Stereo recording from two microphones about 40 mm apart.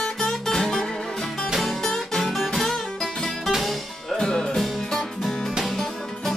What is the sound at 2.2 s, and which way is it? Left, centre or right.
Music, centre.